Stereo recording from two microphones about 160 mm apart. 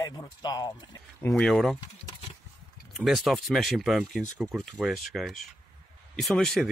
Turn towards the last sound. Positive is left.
turn(degrees=0)  # may be behind; listen again after turning